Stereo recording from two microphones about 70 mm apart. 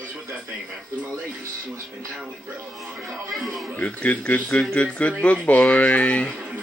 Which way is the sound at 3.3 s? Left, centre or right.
Centre.